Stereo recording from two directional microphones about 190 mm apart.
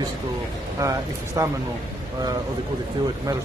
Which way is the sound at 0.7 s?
15° right (ahead or behind).